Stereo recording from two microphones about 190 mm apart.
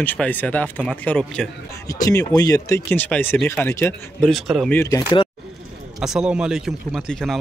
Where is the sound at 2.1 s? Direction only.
20° left (ahead or behind).